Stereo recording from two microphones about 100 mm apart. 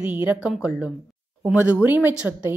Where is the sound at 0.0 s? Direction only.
15° right (ahead or behind).